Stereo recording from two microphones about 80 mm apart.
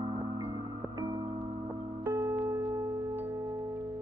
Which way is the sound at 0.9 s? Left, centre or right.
Right.